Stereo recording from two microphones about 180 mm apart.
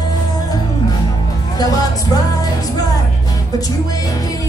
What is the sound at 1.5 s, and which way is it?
Music, 20° left (ahead or behind).